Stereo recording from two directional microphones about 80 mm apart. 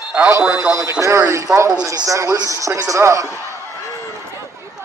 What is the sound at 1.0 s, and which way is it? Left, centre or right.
Speech, right.